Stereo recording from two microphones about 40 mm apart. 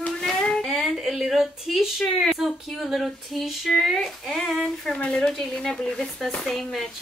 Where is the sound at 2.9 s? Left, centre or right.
Centre.